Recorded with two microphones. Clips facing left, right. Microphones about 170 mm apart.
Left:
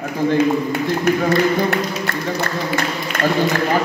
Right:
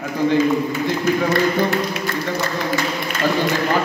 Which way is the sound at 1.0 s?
60° left (ahead or behind).